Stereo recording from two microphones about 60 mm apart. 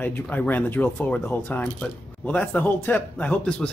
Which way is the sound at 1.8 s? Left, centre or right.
Left.